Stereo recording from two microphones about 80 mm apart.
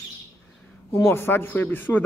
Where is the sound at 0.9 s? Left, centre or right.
Left.